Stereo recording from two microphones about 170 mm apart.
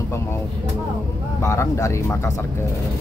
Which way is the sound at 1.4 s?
15° left (ahead or behind).